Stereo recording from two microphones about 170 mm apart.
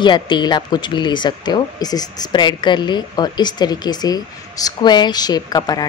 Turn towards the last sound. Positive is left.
turn(degrees=20)  # may be behind; listen again after turning